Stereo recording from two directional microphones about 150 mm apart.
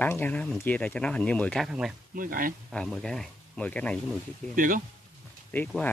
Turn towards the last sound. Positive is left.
turn(degrees=10)  # may be behind; listen again after turning